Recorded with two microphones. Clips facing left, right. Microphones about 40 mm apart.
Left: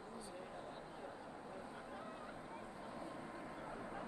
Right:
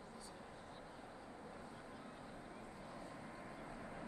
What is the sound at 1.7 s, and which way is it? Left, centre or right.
Vehicle, left.